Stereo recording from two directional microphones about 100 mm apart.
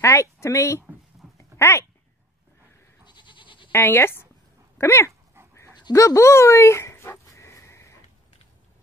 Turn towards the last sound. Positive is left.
turn(degrees=30)  # may be behind; listen again after turning